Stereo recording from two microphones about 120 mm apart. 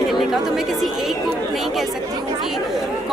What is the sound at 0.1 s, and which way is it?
Chatter, centre (ahead or behind).